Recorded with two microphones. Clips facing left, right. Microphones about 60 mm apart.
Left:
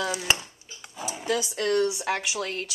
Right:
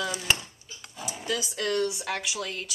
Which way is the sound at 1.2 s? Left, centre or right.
Left.